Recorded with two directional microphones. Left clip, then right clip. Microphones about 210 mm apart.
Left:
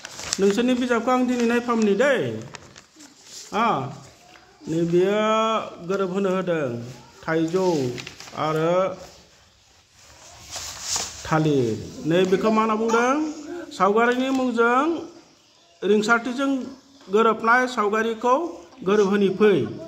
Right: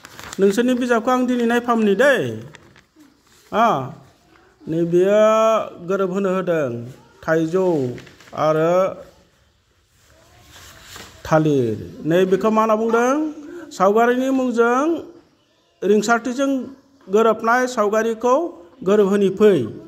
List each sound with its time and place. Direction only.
0.4 s speech: 30° right (ahead or behind)
3.4 s speech: 25° right (ahead or behind)
11.2 s speech: 25° right (ahead or behind)